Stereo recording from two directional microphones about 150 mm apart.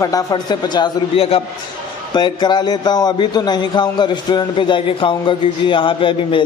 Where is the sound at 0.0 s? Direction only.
25° left (ahead or behind).